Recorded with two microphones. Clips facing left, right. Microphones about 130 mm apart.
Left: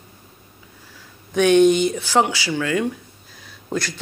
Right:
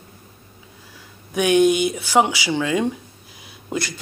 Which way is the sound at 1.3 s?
10° right (ahead or behind).